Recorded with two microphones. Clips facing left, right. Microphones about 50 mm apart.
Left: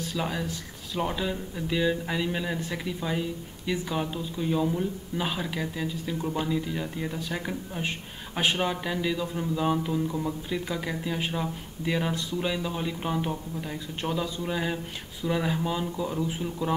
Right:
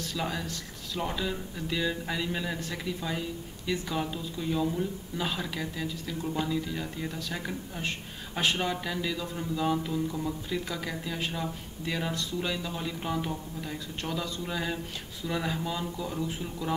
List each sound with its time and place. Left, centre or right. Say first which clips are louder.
0.0 s a man's voice: left 3 dB; centre